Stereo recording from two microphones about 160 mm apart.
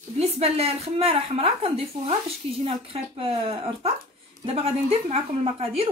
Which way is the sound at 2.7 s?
35° right (ahead or behind).